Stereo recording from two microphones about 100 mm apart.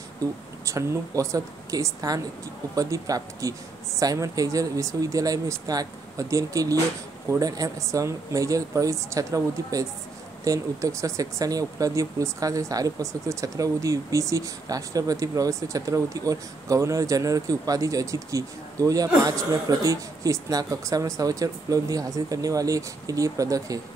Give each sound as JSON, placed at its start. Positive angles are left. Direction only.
{"t": 0.2, "sound": "speech", "side_deg": -30}